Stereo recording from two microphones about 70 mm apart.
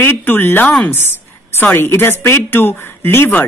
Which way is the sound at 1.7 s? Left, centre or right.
Left.